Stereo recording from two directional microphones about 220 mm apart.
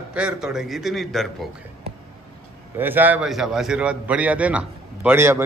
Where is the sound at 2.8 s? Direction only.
10° right (ahead or behind).